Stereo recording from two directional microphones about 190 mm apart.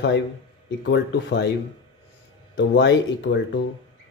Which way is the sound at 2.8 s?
70° left (ahead or behind).